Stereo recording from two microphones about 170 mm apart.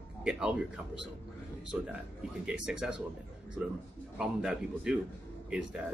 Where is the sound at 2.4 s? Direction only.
5° right (ahead or behind).